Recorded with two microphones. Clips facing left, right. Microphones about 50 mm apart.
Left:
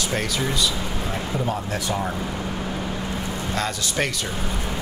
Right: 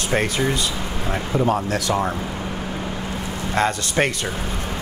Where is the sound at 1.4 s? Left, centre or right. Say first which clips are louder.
Right 5 dB; right.